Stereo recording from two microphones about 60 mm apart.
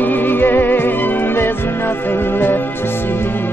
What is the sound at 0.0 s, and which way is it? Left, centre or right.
Music, left.